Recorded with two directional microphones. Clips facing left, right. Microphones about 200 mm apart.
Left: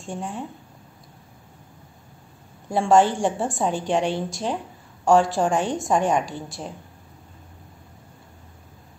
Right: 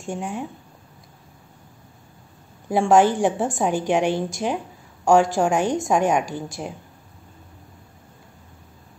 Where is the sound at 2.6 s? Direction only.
15° right (ahead or behind).